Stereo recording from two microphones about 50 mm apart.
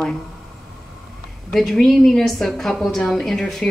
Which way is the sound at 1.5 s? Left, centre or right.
Centre.